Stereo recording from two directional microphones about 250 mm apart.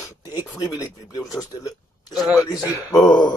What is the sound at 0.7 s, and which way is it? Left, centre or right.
Speech, centre.